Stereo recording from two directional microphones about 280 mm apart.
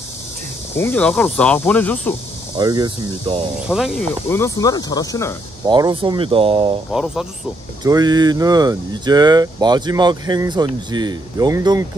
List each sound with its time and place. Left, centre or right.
0.7 s speech: centre
2.5 s speech: centre
3.6 s speech: centre
5.7 s speech: centre
6.9 s speech: centre
7.8 s speech: centre